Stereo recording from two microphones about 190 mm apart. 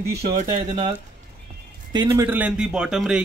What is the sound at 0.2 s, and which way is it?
Speech, 40° right (ahead or behind).